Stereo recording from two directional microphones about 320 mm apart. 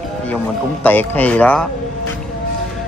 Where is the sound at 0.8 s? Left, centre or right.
Centre.